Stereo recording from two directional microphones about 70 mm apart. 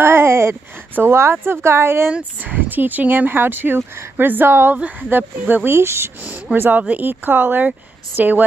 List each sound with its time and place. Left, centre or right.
0.0 s a sound: right
0.9 s speech: right
2.4 s speech: right